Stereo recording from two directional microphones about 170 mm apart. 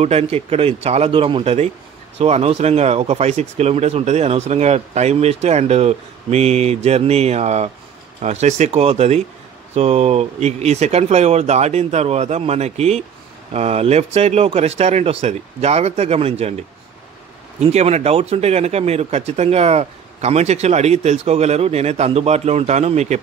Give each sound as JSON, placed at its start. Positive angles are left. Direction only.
{"t": 0.0, "sound": "speech", "side_deg": -35}
{"t": 17.6, "sound": "speech", "side_deg": -40}